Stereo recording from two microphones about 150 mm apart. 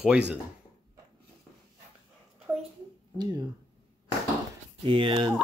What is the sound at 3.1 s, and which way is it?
Speech, 25° right (ahead or behind).